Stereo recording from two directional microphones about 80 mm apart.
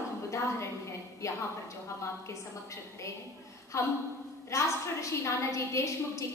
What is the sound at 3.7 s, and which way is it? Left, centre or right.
A woman's voice, left.